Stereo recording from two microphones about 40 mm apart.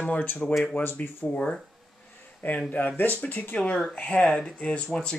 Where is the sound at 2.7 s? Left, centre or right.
Left.